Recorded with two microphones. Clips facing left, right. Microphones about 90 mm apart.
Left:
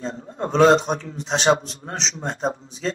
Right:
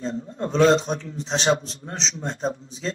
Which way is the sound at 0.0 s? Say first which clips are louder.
Even; 30° left (ahead or behind).